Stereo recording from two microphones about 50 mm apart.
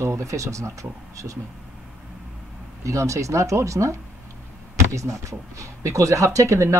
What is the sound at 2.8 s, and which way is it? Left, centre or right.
Speech, right.